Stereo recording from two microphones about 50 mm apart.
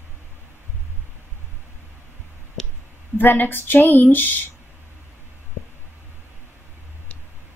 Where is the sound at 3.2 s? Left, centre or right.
Left.